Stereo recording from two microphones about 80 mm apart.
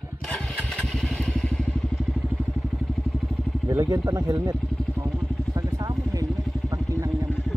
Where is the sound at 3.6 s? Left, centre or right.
Right.